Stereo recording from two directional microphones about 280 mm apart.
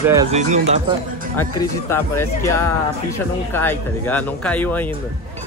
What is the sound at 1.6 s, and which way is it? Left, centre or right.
Speech, centre.